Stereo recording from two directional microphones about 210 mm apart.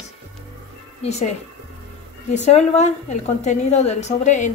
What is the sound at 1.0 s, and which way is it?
A woman's voice, 30° left (ahead or behind).